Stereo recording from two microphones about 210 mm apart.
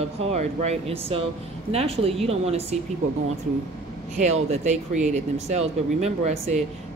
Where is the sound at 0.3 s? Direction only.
30° right (ahead or behind).